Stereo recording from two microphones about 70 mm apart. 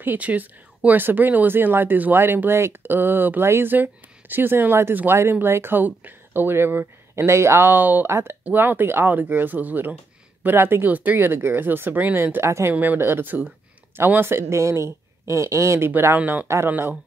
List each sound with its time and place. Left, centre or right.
0.0 s speech: right
8.1 s speech: right
12.7 s speech: right
16.2 s speech: right
16.4 s speech: right